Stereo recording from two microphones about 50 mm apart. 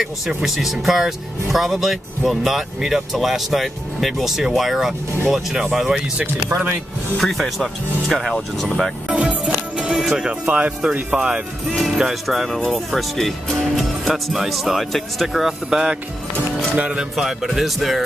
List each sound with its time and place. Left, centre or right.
0.6 s speech: centre
7.2 s speech: centre
9.1 s music: right
9.9 s music: centre
10.4 s speech: right
11.8 s speech: centre
12.4 s speech: centre
15.3 s speech: centre
16.7 s speech: right
17.1 s speech: centre